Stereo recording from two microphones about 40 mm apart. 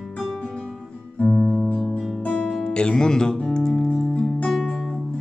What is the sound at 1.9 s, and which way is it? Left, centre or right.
Music, left.